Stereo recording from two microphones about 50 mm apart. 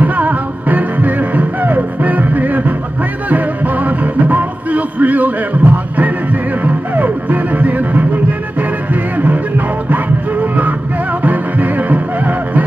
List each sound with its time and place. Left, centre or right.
0.0 s music: right
9.1 s music: right
10.4 s music: right